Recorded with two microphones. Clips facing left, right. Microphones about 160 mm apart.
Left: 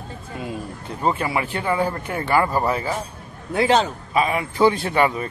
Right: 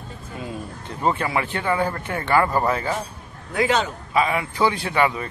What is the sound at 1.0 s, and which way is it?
Speech, 15° left (ahead or behind).